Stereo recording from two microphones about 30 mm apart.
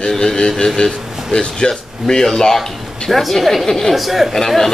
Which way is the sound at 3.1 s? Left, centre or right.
Centre.